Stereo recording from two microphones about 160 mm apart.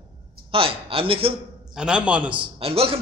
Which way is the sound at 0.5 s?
35° right (ahead or behind).